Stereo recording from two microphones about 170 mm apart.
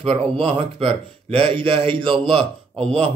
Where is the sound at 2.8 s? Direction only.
5° left (ahead or behind).